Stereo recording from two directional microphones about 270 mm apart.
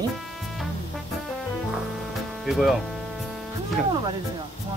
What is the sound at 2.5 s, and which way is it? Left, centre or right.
Speech, centre.